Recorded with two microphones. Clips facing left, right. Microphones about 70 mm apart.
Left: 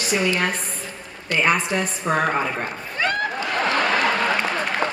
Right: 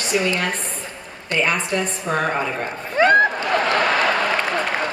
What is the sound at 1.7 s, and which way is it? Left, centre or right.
A woman's voice, centre.